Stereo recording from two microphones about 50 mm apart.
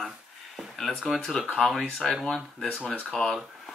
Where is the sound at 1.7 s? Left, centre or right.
Centre.